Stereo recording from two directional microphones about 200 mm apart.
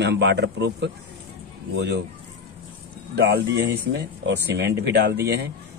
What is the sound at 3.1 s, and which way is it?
Speech, 55° right (ahead or behind).